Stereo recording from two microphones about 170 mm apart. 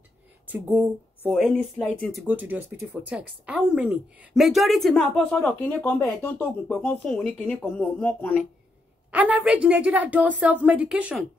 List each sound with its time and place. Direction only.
0.5 s speech: 10° right (ahead or behind)
1.3 s speech: centre (ahead or behind)
2.2 s speech: 10° right (ahead or behind); by 8.4 s 10° left (ahead or behind)
9.1 s a woman's voice: 10° right (ahead or behind)